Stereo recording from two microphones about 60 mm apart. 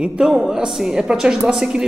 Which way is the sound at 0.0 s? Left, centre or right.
Centre.